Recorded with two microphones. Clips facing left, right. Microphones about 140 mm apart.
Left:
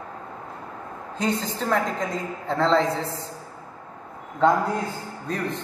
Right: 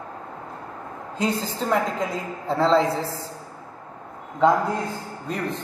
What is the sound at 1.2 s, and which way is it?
A man's voice, 5° right (ahead or behind).